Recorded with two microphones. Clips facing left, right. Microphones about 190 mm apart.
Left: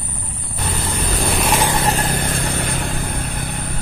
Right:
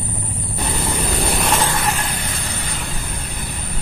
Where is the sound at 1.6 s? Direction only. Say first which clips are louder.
Left 2 dB; 20° left (ahead or behind).